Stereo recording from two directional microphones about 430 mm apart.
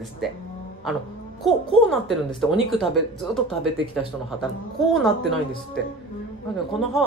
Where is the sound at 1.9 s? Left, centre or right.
Centre.